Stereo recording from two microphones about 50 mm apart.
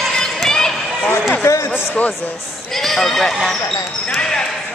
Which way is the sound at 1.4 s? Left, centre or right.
Left.